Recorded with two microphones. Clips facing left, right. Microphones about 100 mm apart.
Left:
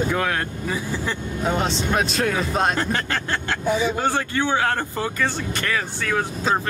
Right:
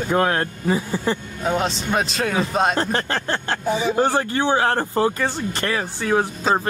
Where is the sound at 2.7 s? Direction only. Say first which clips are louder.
Right 2 dB; 30° right (ahead or behind).